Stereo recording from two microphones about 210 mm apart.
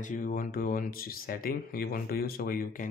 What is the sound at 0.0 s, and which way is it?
Speech, 40° left (ahead or behind).